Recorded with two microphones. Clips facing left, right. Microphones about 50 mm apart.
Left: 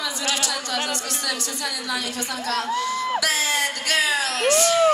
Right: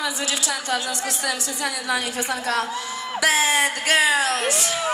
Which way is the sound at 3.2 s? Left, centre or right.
Right.